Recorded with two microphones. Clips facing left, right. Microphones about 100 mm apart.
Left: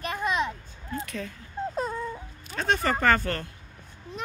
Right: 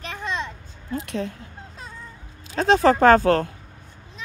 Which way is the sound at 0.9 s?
65° right (ahead or behind).